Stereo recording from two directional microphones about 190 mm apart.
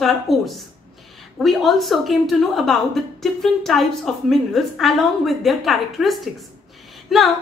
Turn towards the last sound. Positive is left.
turn(degrees=0)  # may be behind; listen again after turning